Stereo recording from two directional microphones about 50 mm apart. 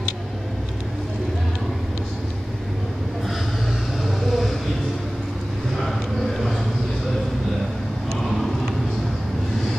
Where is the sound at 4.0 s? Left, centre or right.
Centre.